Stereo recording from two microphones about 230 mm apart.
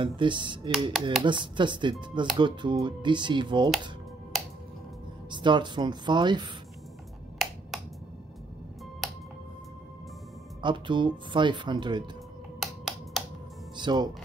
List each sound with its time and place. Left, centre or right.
0.0 s speech: right
4.3 s music: centre
5.3 s speech: centre
7.4 s finger snapping: centre
9.0 s music: centre
10.6 s speech: right
12.5 s a sound: centre
13.7 s speech: centre